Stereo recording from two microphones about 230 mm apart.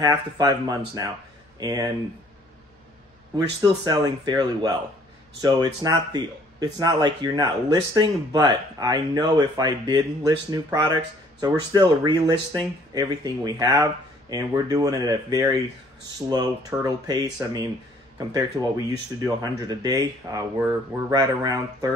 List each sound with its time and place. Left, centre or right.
0.0 s speech: centre
3.3 s speech: centre